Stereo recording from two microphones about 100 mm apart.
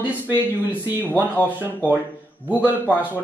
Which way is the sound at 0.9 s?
20° left (ahead or behind).